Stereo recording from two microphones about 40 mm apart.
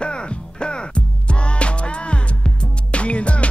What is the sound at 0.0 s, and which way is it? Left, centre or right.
Music, left.